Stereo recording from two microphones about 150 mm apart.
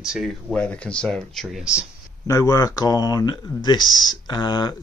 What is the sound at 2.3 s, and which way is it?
Speech, 20° left (ahead or behind).